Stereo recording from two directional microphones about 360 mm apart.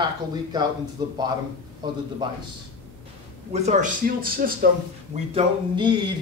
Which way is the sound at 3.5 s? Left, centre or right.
Centre.